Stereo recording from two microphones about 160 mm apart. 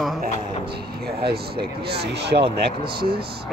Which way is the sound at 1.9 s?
90° right.